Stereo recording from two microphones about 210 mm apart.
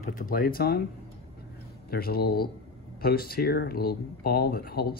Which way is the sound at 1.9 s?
45° left (ahead or behind).